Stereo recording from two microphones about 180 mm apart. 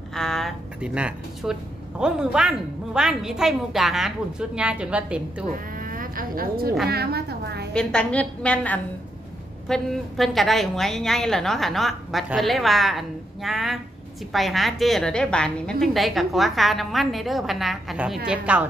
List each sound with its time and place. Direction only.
0.1 s speech: centre (ahead or behind)
5.8 s a sound: 50° right (ahead or behind)
7.7 s a woman's voice: 5° left (ahead or behind)